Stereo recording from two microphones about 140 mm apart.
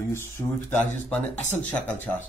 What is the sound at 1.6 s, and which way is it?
Speech, 10° left (ahead or behind).